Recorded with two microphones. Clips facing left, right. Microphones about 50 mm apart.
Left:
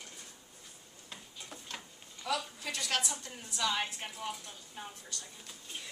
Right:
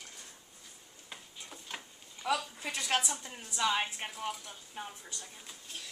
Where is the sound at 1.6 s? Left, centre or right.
Centre.